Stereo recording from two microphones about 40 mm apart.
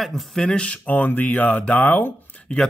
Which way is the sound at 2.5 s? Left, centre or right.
Left.